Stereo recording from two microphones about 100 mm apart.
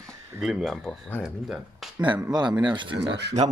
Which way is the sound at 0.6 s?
Centre (ahead or behind).